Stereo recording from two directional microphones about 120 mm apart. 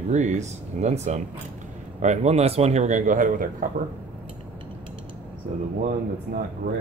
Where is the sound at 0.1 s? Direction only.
75° right (ahead or behind).